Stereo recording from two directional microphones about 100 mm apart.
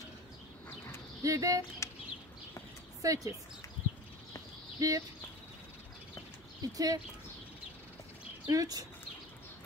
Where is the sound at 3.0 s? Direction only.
35° right (ahead or behind).